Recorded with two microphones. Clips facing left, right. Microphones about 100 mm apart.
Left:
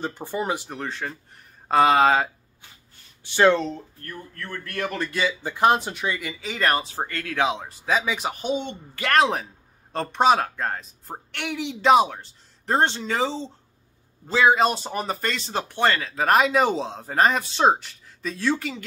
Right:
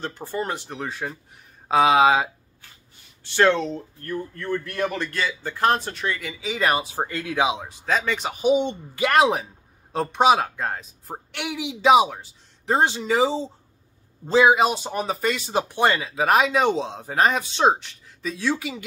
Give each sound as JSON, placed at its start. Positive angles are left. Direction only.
{"t": 0.0, "sound": "speech", "side_deg": 15}
{"t": 0.7, "sound": "a woman's voice", "side_deg": -10}
{"t": 3.3, "sound": "speech", "side_deg": 5}
{"t": 4.0, "sound": "a woman's voice", "side_deg": -15}
{"t": 4.9, "sound": "speech", "side_deg": 5}
{"t": 8.4, "sound": "a woman's voice", "side_deg": -10}
{"t": 14.6, "sound": "speech", "side_deg": 0}